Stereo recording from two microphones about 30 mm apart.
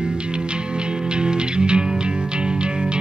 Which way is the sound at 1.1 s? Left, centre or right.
Right.